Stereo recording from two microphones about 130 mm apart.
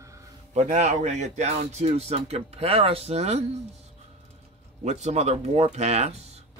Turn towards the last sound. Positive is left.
turn(degrees=-55)  # may be behind; listen again after turning